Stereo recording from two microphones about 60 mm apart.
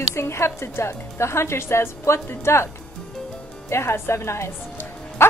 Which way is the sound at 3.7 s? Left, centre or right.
Left.